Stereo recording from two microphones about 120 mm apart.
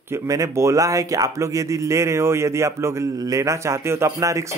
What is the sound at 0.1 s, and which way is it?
Speech, 25° right (ahead or behind).